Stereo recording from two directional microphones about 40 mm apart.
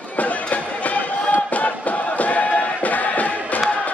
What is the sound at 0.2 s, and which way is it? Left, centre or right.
Run, left.